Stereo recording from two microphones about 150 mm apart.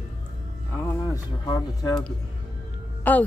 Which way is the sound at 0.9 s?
25° left (ahead or behind).